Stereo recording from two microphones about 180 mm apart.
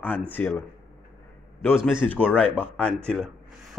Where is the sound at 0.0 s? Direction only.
10° left (ahead or behind).